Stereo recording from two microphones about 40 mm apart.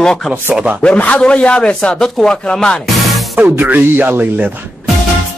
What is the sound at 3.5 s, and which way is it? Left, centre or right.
Speech, right.